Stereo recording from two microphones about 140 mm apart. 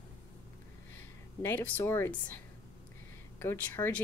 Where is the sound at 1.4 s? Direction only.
15° left (ahead or behind).